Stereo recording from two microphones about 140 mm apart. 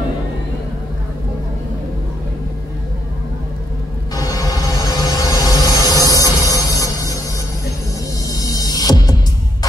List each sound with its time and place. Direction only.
4.1 s music: 25° left (ahead or behind)
8.2 s mechanisms: 25° left (ahead or behind)